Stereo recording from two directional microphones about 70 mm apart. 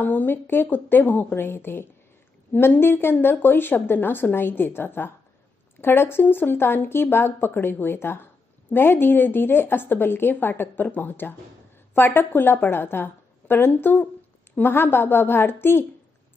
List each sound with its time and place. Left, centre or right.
0.0 s a woman's voice: left